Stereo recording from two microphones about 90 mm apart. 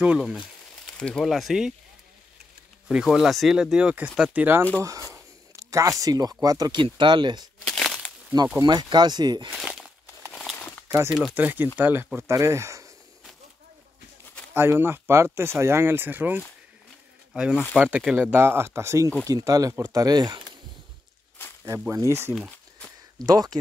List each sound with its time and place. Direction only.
0.8 s a sound: 10° left (ahead or behind)
1.2 s speech: centre (ahead or behind)
2.9 s speech: 5° right (ahead or behind)
5.1 s a sound: 35° right (ahead or behind)
6.7 s speech: 60° right (ahead or behind)
7.6 s a sound: 5° left (ahead or behind)
8.6 s speech: 55° right (ahead or behind)
10.3 s crumpling: 5° right (ahead or behind)
11.1 s speech: centre (ahead or behind)
11.3 s speech: 20° right (ahead or behind)
14.5 s speech: 25° right (ahead or behind)
17.3 s speech: 10° right (ahead or behind); by 20.4 s 50° right (ahead or behind)
21.7 s speech: 30° right (ahead or behind)
23.2 s speech: 45° right (ahead or behind)